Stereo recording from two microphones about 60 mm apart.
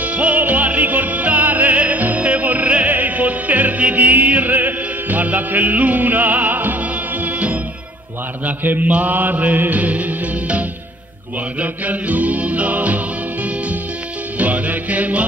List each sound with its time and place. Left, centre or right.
0.0 s music: right
11.6 s music: right